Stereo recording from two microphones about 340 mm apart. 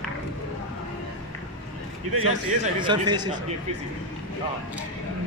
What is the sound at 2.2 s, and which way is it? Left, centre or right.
A man's voice, centre.